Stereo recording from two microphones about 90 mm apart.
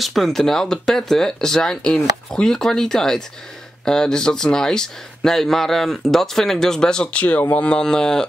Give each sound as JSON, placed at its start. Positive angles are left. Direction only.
{"t": 0.0, "sound": "speech", "side_deg": 0}